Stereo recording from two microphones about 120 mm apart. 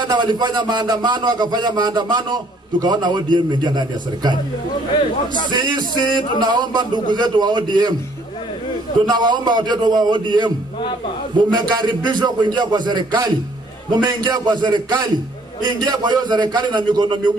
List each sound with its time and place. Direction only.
0.1 s a man's voice: 40° right (ahead or behind)
5.5 s a man's voice: 40° right (ahead or behind)
9.0 s a man's voice: 40° right (ahead or behind)